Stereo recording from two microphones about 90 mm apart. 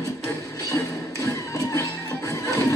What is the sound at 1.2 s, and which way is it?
Music, 35° left (ahead or behind).